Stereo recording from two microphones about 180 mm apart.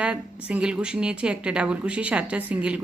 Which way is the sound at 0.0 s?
5° right (ahead or behind).